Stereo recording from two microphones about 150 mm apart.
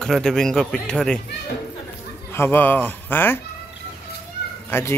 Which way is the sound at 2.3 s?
15° left (ahead or behind).